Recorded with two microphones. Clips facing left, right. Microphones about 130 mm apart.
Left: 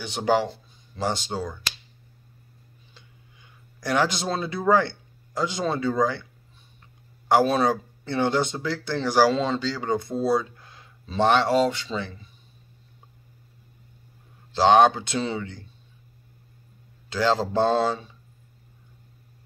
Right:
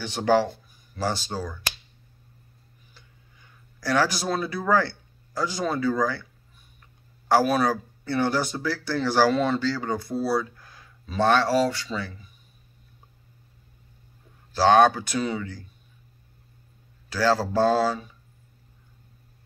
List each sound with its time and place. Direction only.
0.0 s speech: 15° left (ahead or behind)
2.9 s a sound: 20° left (ahead or behind)
6.8 s speech: 20° left (ahead or behind)
14.5 s speech: 20° left (ahead or behind)
17.1 s speech: 20° left (ahead or behind)